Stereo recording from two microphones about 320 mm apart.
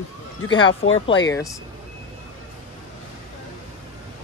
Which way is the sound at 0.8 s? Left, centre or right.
Centre.